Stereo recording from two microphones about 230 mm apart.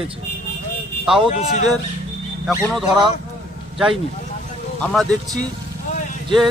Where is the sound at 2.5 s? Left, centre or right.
Centre.